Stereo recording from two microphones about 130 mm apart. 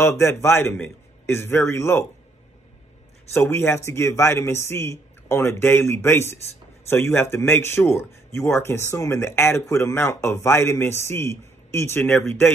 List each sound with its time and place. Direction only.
0.0 s speech: 20° left (ahead or behind)
3.3 s speech: 20° left (ahead or behind)